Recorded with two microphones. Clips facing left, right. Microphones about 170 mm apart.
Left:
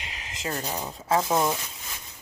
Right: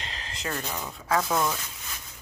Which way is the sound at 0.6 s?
35° left (ahead or behind).